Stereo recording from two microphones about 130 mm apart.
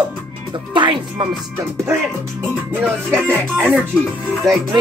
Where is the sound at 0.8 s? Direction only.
35° right (ahead or behind).